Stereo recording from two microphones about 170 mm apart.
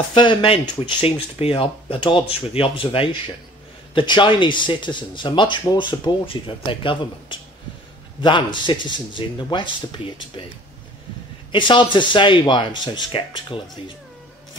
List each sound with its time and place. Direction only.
0.1 s speech: 25° left (ahead or behind)
11.5 s speech: 30° left (ahead or behind)